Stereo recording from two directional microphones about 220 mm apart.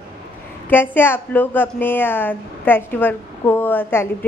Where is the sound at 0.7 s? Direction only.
10° left (ahead or behind).